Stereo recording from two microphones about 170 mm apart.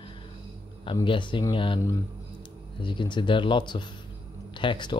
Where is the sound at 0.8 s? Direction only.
30° left (ahead or behind).